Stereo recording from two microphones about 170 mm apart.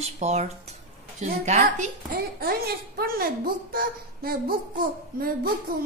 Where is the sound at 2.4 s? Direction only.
65° right (ahead or behind).